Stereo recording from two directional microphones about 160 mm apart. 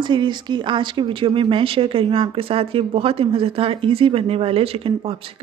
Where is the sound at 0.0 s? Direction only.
30° right (ahead or behind).